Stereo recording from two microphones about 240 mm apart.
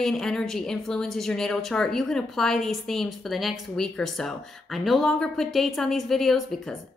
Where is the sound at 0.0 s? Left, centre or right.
Centre.